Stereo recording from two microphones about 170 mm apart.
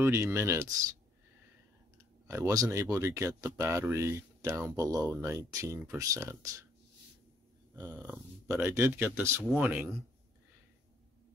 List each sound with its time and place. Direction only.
0.0 s speech: 15° right (ahead or behind)
2.2 s speech: 15° right (ahead or behind)
4.8 s speech: centre (ahead or behind)
5.2 s speech: 15° right (ahead or behind)
7.7 s speech: 15° right (ahead or behind)